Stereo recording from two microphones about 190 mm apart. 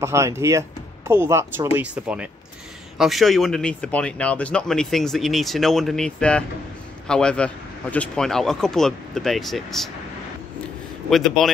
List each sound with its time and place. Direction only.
0.0 s speech: 15° right (ahead or behind); by 9.8 s centre (ahead or behind)
11.1 s speech: centre (ahead or behind)